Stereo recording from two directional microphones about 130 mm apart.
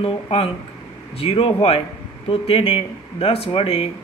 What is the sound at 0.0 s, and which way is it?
Speech, 45° left (ahead or behind).